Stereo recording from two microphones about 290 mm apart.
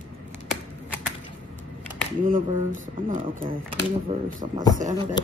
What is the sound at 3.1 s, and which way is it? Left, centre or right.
A man's voice, right.